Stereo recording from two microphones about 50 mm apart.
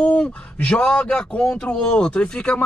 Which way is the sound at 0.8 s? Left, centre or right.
Centre.